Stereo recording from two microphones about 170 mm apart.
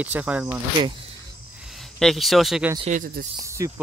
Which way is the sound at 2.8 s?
50° right (ahead or behind).